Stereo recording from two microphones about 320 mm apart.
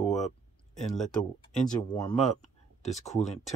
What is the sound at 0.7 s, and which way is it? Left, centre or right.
Speech, centre.